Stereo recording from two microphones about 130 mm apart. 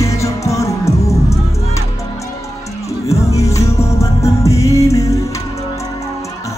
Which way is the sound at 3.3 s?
25° left (ahead or behind).